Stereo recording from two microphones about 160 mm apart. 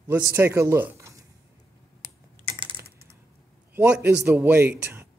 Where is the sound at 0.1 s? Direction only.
15° right (ahead or behind).